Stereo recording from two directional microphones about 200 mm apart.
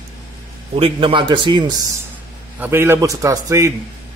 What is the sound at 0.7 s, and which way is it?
A man's voice, 25° right (ahead or behind).